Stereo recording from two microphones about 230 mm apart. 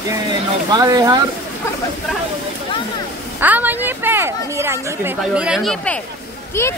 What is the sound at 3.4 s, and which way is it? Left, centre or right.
A woman's voice, centre.